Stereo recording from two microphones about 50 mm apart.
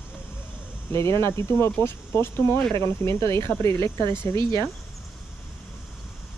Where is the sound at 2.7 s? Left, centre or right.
Left.